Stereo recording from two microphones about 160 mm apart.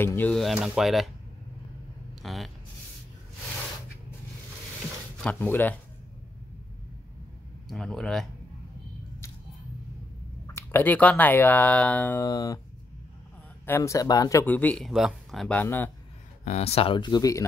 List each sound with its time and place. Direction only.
0.0 s speech: 10° left (ahead or behind)
0.4 s speech: centre (ahead or behind)
2.2 s speech: centre (ahead or behind)
5.2 s speech: 10° left (ahead or behind)
7.6 s speech: centre (ahead or behind)
10.4 s speech: 15° left (ahead or behind)
13.7 s speech: 15° left (ahead or behind)
14.4 s speech: 10° left (ahead or behind)
14.9 s speech: 5° right (ahead or behind); by 15.9 s 10° left (ahead or behind)
16.4 s speech: 40° left (ahead or behind); by 17.5 s 20° left (ahead or behind)